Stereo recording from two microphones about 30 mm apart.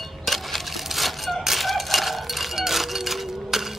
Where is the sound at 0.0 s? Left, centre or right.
Centre.